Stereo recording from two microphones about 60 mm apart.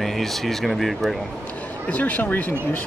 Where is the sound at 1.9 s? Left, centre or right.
Left.